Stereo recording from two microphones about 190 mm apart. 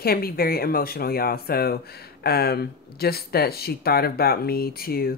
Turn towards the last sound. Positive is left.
turn(degrees=55)  # may be behind; listen again after turning